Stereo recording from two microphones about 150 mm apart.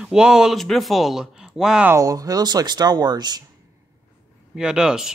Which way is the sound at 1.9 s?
25° right (ahead or behind).